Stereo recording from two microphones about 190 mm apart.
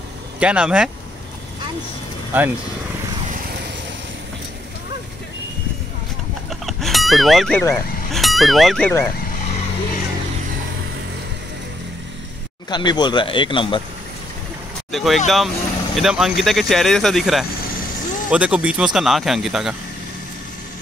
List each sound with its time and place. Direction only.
0.4 s speech: 5° right (ahead or behind)
2.3 s speech: 10° right (ahead or behind)
6.6 s music: centre (ahead or behind)
7.7 s speech: centre (ahead or behind)
12.6 s speech: 20° left (ahead or behind)
14.9 s speech: centre (ahead or behind)